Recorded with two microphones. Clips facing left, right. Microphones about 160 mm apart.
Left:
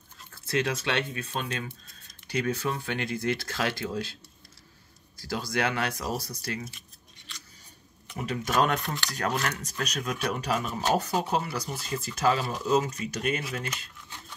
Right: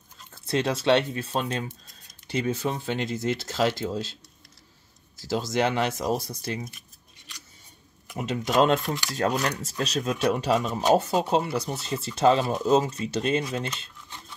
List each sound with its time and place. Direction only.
0.3 s dog: 25° right (ahead or behind)
0.8 s speech: 30° right (ahead or behind)
2.4 s speech: 20° right (ahead or behind)
5.5 s speech: 20° right (ahead or behind)
8.1 s speech: 15° right (ahead or behind)